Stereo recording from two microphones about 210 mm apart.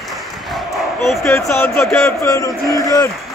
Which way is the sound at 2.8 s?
15° left (ahead or behind).